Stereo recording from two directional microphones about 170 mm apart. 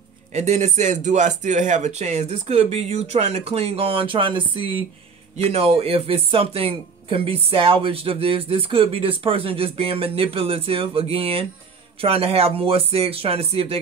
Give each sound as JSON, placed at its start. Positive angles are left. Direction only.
{"t": 0.3, "sound": "speech", "side_deg": -45}